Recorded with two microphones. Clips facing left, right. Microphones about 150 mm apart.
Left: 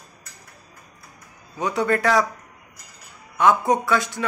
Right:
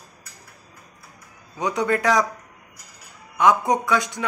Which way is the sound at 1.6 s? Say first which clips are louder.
Left 1 dB; 20° right (ahead or behind).